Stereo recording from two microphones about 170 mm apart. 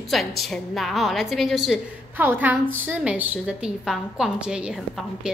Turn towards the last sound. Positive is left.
turn(degrees=-5)  # may be behind; listen again after turning